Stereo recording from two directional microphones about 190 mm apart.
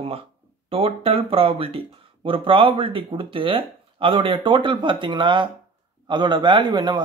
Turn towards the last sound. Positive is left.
turn(degrees=-25)  # may be behind; listen again after turning